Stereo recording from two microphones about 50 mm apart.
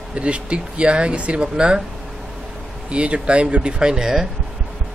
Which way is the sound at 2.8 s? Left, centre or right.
Right.